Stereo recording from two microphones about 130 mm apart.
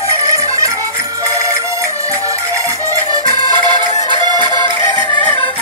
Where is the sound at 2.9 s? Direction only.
30° right (ahead or behind).